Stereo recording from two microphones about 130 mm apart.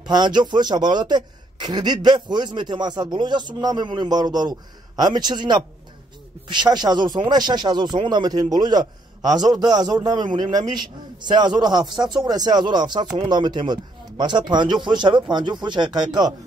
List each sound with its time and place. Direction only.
0.1 s a man's voice: 35° right (ahead or behind)